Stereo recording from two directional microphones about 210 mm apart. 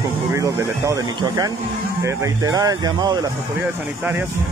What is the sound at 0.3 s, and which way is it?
Speech, 15° right (ahead or behind).